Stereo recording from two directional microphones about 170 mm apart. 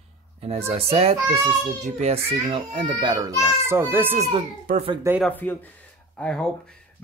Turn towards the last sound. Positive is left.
turn(degrees=5)  # may be behind; listen again after turning